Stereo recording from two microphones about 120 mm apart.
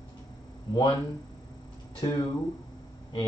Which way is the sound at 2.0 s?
35° left (ahead or behind).